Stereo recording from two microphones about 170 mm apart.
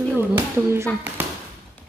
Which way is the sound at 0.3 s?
15° right (ahead or behind).